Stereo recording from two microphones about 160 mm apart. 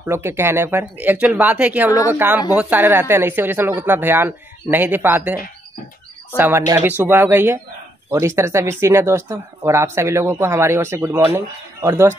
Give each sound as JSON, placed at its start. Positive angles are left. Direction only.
{"t": 0.0, "sound": "speech", "side_deg": -15}